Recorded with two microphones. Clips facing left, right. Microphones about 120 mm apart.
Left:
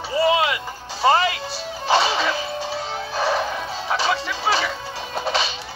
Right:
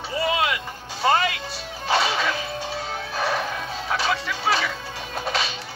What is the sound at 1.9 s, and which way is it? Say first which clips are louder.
Music: left 3 dB; 30° left (ahead or behind).